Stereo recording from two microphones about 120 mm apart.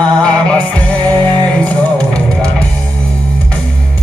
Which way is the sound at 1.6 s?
10° left (ahead or behind).